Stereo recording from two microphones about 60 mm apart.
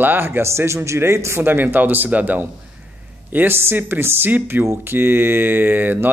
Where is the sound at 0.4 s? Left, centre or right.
Right.